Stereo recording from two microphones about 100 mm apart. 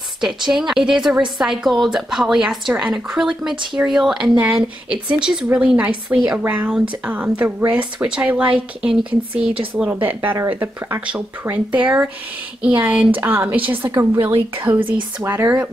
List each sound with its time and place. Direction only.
0.2 s a woman's voice: 5° right (ahead or behind); by 14.6 s 20° right (ahead or behind)
14.8 s speech: 60° right (ahead or behind)
15.2 s speech: 25° right (ahead or behind)